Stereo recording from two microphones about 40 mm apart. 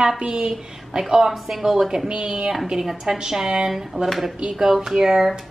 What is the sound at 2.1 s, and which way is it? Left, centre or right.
A woman's voice, right.